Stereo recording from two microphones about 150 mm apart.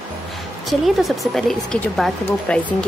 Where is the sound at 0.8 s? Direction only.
Centre (ahead or behind).